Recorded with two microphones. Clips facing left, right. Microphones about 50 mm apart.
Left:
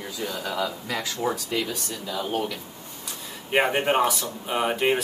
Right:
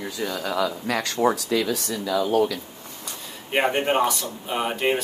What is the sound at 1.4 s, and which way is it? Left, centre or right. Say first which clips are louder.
Speech: right 5 dB; right.